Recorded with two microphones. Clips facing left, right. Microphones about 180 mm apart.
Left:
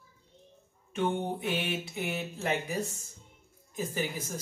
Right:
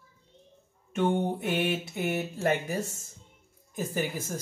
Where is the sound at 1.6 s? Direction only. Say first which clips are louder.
Right 5 dB; 50° right (ahead or behind).